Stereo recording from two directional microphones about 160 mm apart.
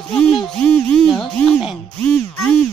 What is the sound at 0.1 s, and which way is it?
Music, 5° left (ahead or behind).